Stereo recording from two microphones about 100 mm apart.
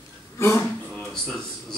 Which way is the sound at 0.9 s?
5° left (ahead or behind).